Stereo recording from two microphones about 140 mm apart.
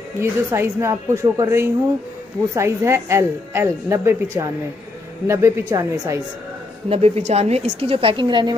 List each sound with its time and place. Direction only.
0.2 s speech: 20° right (ahead or behind)
6.9 s a woman's voice: 50° right (ahead or behind); by 8.5 s 35° right (ahead or behind)